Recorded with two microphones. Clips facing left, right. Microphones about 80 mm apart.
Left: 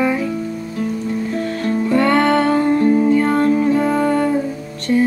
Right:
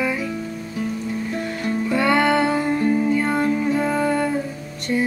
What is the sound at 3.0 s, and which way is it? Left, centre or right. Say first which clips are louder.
Music: left 5 dB; centre.